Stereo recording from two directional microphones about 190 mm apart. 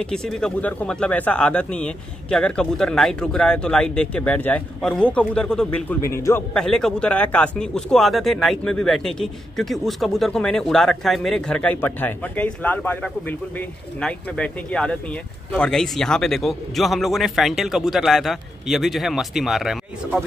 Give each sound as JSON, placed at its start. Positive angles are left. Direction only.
{"t": 0.0, "sound": "speech", "side_deg": 5}